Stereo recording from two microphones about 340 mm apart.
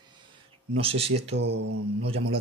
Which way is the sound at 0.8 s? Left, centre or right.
Centre.